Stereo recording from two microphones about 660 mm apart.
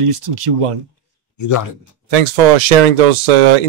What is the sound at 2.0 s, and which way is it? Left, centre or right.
Speech, right.